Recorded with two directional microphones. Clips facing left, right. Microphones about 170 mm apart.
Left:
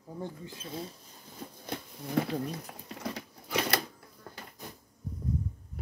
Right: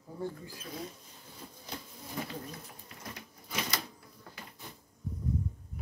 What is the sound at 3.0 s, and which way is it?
Sewing machine, 70° left (ahead or behind).